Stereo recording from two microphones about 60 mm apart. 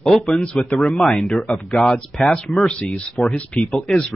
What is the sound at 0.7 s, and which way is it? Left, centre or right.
Speech, centre.